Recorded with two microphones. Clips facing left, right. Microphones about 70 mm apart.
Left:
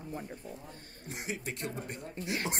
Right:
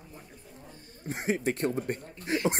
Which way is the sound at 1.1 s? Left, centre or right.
Right.